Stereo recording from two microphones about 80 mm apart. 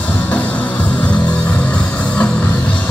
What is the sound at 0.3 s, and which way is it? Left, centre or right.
Music, centre.